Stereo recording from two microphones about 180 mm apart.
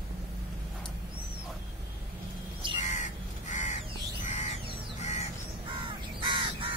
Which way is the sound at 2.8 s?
45° left (ahead or behind).